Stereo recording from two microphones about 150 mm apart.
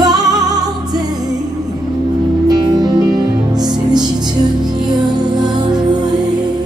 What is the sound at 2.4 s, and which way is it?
Music, 25° right (ahead or behind).